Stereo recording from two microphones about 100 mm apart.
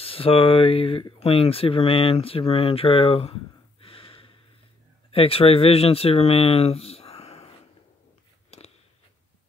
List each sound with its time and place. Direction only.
0.0 s speech: 70° left (ahead or behind)
3.8 s snort: 65° left (ahead or behind)
5.1 s speech: 70° left (ahead or behind); by 7.5 s 90° left
8.5 s a sound: 90° left